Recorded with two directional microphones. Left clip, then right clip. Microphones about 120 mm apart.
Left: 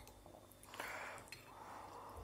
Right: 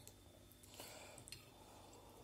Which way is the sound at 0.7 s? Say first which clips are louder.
Left 9 dB; 10° right (ahead or behind).